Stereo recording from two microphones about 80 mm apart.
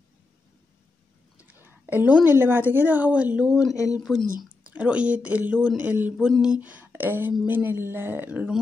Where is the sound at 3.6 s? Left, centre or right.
Left.